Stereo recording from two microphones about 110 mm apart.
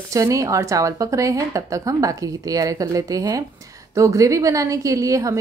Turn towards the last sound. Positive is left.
turn(degrees=-30)  # may be behind; listen again after turning